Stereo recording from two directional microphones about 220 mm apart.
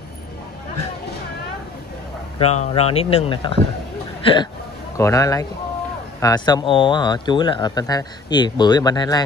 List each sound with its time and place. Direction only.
2.3 s speech: 30° left (ahead or behind)